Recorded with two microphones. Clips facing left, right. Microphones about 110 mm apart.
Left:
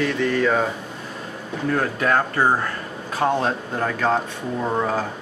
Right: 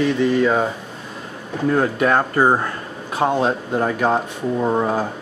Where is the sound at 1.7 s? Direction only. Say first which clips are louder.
Right 3 dB; 20° right (ahead or behind).